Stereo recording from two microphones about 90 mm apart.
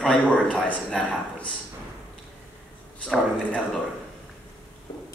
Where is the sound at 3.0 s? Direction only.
15° left (ahead or behind).